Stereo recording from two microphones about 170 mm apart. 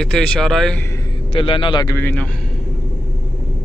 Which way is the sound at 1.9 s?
10° left (ahead or behind).